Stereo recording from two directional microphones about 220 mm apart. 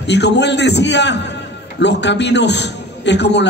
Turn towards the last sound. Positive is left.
turn(degrees=50)  # may be behind; listen again after turning